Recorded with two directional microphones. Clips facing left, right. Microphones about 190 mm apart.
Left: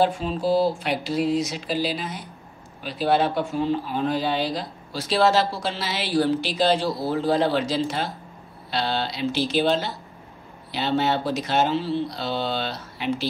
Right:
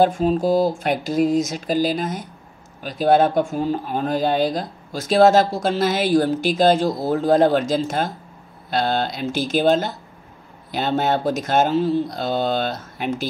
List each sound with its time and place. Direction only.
0.0 s speech: 45° right (ahead or behind)